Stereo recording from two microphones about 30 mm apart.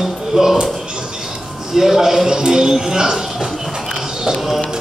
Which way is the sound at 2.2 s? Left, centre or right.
Right.